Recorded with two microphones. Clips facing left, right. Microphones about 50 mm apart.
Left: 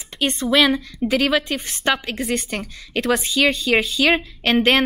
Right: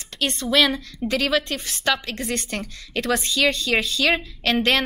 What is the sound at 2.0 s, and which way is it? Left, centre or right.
A woman's voice, centre.